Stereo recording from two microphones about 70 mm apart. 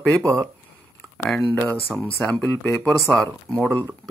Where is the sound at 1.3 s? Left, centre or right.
Left.